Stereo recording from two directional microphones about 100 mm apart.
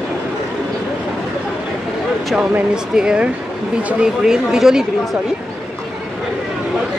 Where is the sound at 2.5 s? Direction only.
10° right (ahead or behind).